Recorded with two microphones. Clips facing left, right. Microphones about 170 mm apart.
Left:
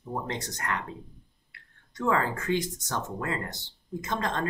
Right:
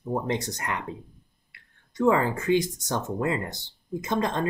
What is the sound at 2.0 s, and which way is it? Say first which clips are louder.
Speech: right 5 dB; 15° right (ahead or behind).